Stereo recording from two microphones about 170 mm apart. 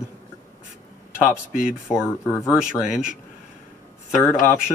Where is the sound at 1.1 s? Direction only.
10° left (ahead or behind).